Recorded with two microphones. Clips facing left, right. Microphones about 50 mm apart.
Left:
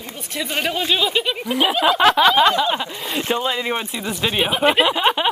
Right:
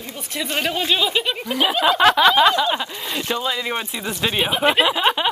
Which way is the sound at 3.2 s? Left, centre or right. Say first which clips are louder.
Left 2 dB; left.